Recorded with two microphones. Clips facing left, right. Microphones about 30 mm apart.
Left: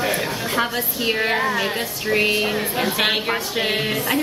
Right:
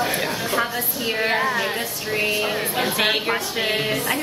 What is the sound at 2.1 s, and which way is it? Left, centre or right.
Speech, left.